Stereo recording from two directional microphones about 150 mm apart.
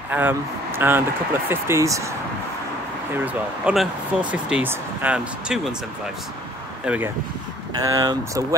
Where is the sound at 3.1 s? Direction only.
10° right (ahead or behind).